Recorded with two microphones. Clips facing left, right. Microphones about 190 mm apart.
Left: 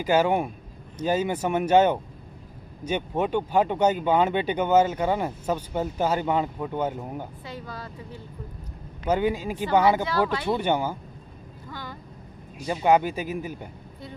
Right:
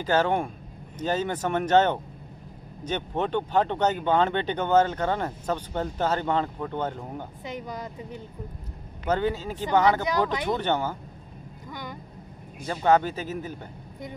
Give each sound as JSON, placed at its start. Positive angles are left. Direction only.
{"t": 0.0, "sound": "speech", "side_deg": 10}
{"t": 7.4, "sound": "speech", "side_deg": -20}
{"t": 9.0, "sound": "speech", "side_deg": 10}
{"t": 10.3, "sound": "speech", "side_deg": -20}
{"t": 10.6, "sound": "speech", "side_deg": 10}
{"t": 11.7, "sound": "vehicle", "side_deg": -15}
{"t": 12.6, "sound": "speech", "side_deg": 10}